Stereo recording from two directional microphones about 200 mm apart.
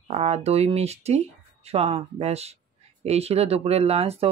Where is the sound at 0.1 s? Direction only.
30° right (ahead or behind).